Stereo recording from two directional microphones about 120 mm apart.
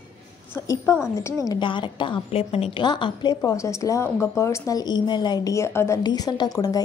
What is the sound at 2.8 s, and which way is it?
Speech, 40° left (ahead or behind).